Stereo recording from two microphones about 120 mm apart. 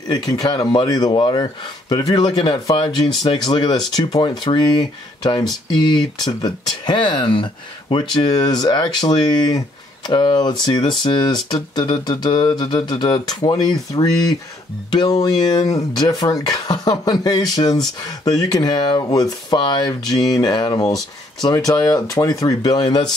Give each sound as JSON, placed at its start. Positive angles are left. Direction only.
{"t": 0.1, "sound": "speech", "side_deg": 35}